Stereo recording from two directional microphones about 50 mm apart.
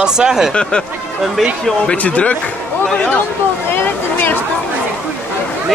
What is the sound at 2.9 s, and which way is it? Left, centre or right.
Speech, centre.